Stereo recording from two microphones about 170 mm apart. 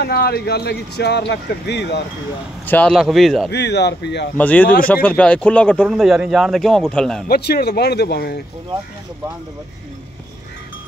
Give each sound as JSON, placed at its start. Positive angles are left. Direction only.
{"t": 0.0, "sound": "speech", "side_deg": 65}
{"t": 2.6, "sound": "speech", "side_deg": 10}
{"t": 3.5, "sound": "speech", "side_deg": 85}
{"t": 4.4, "sound": "speech", "side_deg": 10}
{"t": 7.2, "sound": "speech", "side_deg": 70}